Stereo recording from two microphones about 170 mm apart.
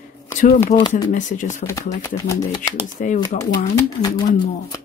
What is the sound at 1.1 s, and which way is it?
Speech, 45° left (ahead or behind).